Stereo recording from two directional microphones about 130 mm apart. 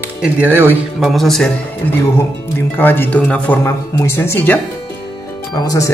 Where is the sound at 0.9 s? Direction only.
Centre (ahead or behind).